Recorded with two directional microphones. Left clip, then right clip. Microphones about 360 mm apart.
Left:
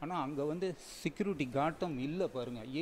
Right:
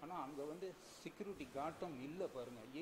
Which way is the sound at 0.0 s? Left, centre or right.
Left.